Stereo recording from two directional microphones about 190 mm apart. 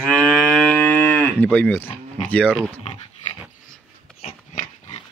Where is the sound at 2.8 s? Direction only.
35° left (ahead or behind).